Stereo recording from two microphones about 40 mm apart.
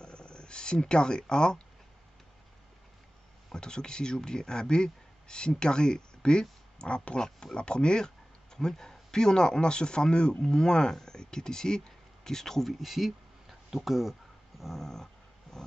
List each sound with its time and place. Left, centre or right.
0.0 s speech: left
3.5 s speech: left
12.8 s speech: centre
14.6 s dog: centre
15.5 s a sound: centre